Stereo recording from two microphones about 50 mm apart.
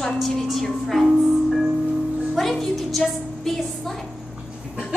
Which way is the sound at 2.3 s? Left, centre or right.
Centre.